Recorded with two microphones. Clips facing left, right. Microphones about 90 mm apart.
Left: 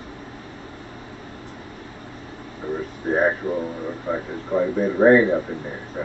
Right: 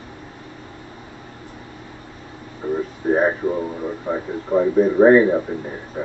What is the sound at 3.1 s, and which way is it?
Speech, 10° right (ahead or behind).